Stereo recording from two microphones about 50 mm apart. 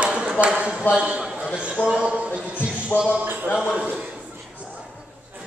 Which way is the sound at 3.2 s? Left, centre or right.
Right.